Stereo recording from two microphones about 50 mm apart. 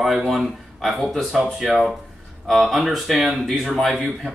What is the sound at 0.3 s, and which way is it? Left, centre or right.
Speech, centre.